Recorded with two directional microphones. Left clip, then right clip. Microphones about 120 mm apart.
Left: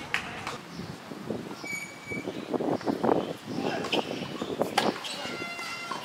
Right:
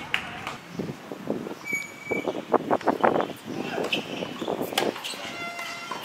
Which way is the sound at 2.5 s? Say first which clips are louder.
Right 6 dB; 50° right (ahead or behind).